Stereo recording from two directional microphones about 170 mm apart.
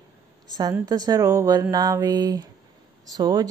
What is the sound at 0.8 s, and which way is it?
Speech, 25° right (ahead or behind).